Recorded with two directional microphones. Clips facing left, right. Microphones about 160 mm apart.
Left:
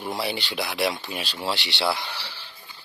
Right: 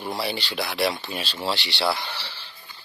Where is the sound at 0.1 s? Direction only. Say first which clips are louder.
Even; 15° left (ahead or behind).